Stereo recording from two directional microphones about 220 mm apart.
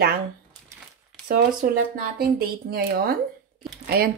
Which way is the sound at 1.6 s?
40° right (ahead or behind).